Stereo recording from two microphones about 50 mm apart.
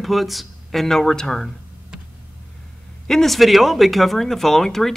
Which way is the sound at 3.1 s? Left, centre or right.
Centre.